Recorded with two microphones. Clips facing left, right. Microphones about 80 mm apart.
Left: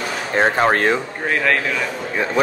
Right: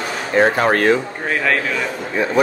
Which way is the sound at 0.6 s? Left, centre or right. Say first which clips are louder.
Right 1 dB; left.